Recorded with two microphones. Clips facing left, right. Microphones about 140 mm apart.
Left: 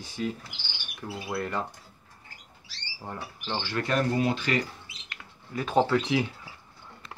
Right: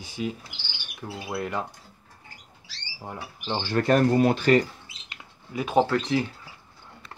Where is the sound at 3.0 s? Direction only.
10° right (ahead or behind).